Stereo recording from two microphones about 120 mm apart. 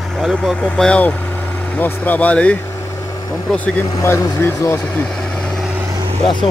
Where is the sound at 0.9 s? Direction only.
10° left (ahead or behind).